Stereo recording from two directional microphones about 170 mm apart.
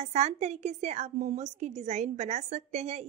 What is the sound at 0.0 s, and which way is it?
A woman's voice, 40° right (ahead or behind).